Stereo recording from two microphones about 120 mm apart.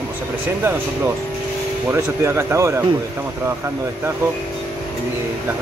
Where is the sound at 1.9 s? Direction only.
25° right (ahead or behind).